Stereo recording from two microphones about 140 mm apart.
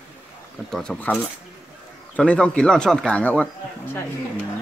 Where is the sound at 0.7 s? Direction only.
5° left (ahead or behind).